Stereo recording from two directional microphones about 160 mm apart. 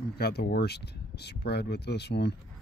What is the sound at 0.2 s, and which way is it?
Speech, 85° left.